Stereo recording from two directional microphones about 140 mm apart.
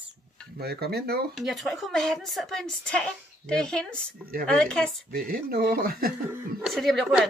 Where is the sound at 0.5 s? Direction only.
90° right.